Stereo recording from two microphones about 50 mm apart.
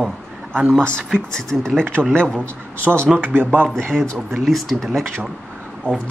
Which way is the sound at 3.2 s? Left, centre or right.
Right.